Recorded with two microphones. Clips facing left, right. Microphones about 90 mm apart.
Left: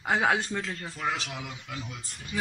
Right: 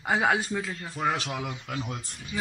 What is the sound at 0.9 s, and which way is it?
Speech, 45° right (ahead or behind).